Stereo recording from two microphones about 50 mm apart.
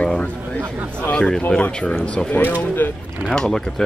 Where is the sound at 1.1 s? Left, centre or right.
Left.